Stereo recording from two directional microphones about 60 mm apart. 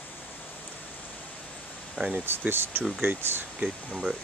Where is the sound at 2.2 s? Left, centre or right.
Right.